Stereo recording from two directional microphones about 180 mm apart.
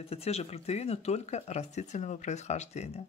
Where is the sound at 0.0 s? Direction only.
35° left (ahead or behind).